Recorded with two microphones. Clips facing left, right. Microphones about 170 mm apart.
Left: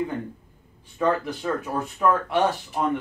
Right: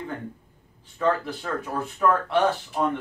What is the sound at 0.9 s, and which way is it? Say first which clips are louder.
Speech: left 1 dB; 15° left (ahead or behind).